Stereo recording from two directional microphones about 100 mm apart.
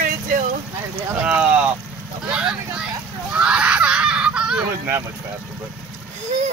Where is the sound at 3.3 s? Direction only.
10° right (ahead or behind).